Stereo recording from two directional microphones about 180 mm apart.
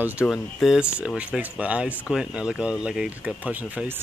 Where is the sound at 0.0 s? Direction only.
5° right (ahead or behind).